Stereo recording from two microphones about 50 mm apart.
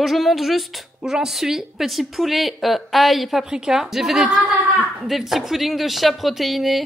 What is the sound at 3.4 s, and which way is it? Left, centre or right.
A woman's voice, centre.